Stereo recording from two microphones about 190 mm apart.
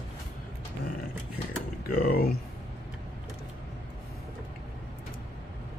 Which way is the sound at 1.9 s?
50° left (ahead or behind).